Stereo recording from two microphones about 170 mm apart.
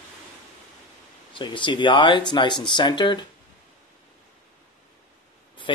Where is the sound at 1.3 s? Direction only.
30° left (ahead or behind).